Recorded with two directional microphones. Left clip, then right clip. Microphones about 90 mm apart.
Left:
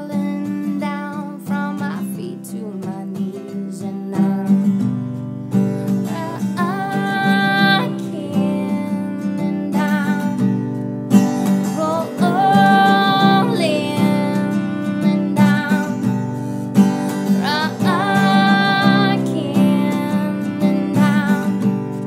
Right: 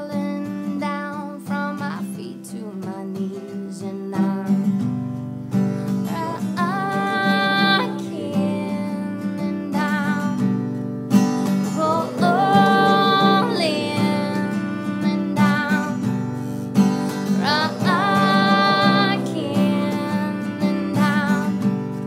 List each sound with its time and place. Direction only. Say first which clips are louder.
6.6 s music: left 1 dB; 5° left (ahead or behind)
10.1 s music: left 3 dB; 25° left (ahead or behind)
11.8 s music: right 1 dB; centre (ahead or behind)
14.5 s music: left 4 dB; 15° left (ahead or behind)
15.8 s music: left 3 dB; 25° left (ahead or behind)
17.4 s music: right 2 dB; centre (ahead or behind)
21.3 s music: left 3 dB; 20° left (ahead or behind)